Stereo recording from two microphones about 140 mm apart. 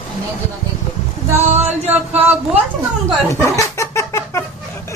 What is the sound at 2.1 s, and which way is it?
Speech, 15° right (ahead or behind).